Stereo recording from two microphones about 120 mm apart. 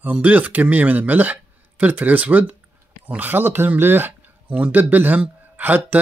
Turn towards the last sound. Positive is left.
turn(degrees=-15)  # may be behind; listen again after turning